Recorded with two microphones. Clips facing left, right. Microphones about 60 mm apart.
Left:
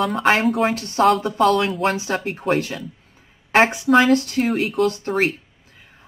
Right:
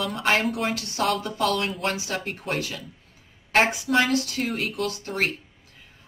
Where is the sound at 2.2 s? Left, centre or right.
Left.